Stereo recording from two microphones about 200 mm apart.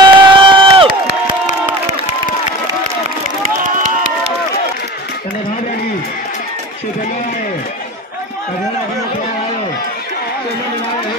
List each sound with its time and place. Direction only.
0.0 s crowd: 25° right (ahead or behind)
3.6 s run: 40° right (ahead or behind)